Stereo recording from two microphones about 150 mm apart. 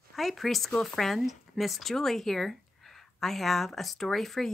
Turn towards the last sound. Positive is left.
turn(degrees=0)  # may be behind; listen again after turning